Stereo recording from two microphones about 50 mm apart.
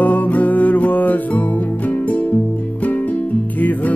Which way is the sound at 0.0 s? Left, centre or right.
Left.